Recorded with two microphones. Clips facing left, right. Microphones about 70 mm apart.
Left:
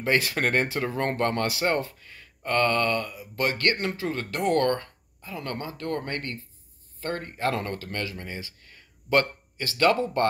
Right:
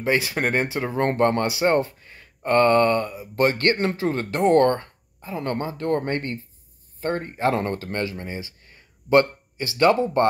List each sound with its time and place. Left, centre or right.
0.0 s speech: centre